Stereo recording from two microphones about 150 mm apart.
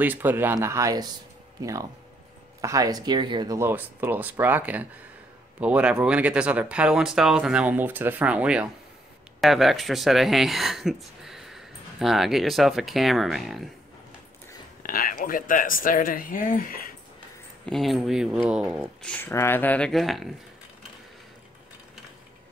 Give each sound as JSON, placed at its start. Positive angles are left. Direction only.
{"t": 0.0, "sound": "speech", "side_deg": -10}
{"t": 3.5, "sound": "speech", "side_deg": -15}
{"t": 14.8, "sound": "speech", "side_deg": 70}
{"t": 17.6, "sound": "speech", "side_deg": 0}
{"t": 19.0, "sound": "speech", "side_deg": 10}